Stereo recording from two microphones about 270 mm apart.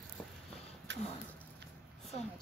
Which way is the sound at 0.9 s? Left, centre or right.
Right.